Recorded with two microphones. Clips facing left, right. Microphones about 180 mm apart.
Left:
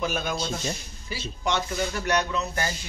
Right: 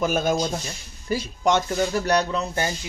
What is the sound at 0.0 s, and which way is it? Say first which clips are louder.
A man's voice: right 6 dB; 45° right (ahead or behind).